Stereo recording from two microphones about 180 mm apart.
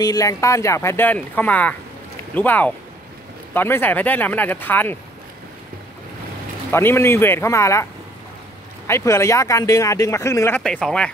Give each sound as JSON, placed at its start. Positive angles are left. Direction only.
{"t": 0.0, "sound": "speech", "side_deg": 20}
{"t": 6.7, "sound": "speech", "side_deg": 15}
{"t": 8.8, "sound": "speech", "side_deg": 15}